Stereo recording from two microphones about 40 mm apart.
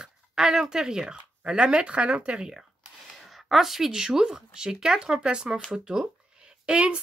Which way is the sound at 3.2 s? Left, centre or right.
Centre.